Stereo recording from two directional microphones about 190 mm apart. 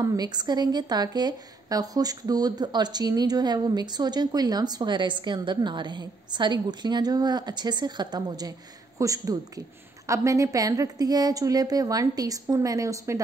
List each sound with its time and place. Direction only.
0.0 s a woman's voice: 20° right (ahead or behind)